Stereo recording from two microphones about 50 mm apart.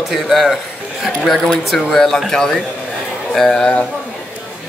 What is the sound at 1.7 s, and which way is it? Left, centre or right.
A man's voice, centre.